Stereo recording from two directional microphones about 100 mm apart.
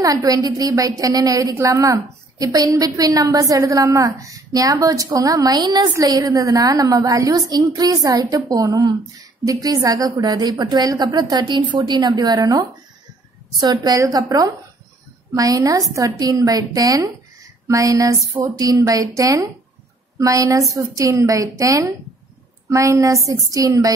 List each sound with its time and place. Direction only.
0.0 s a woman's voice: 35° right (ahead or behind)